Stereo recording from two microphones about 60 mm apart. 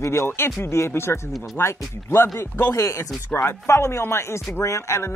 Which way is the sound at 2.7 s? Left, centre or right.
Left.